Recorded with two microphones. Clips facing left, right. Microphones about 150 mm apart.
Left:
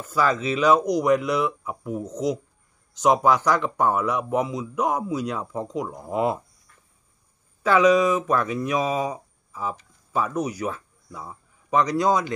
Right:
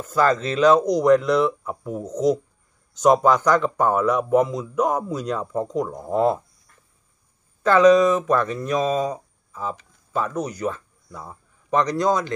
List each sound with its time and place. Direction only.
0.1 s speech: 5° left (ahead or behind)
7.6 s speech: 10° left (ahead or behind)